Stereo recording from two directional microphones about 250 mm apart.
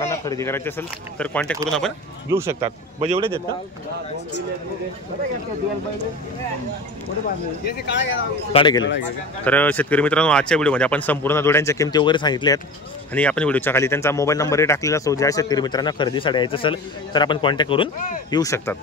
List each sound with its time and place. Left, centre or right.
0.0 s speech: centre
2.2 s speech: centre
2.6 s speech: right
7.6 s speech: left
8.5 s speech: centre
9.4 s speech: centre
13.1 s speech: centre